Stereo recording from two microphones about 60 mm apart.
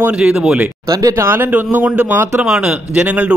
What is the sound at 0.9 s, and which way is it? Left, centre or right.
Speech, right.